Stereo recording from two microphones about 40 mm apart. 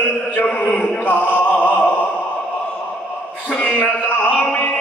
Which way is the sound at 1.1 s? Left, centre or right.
Left.